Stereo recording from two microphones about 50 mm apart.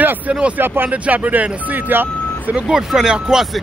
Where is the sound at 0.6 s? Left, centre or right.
Right.